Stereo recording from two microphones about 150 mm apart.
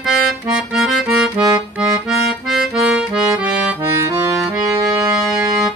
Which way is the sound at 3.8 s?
20° right (ahead or behind).